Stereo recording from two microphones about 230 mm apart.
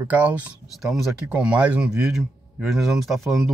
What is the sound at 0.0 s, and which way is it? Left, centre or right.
Speech, centre.